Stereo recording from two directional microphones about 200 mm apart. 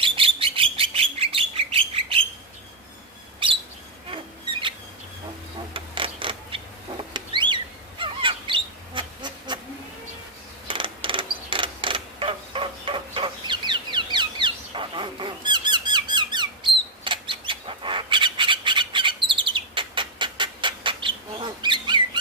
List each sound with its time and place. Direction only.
0.0 s bird: 25° right (ahead or behind)
4.1 s a sound: 25° right (ahead or behind)
7.2 s bird: 25° right (ahead or behind)
10.7 s mechanisms: 25° right (ahead or behind)
17.0 s bird: 25° right (ahead or behind)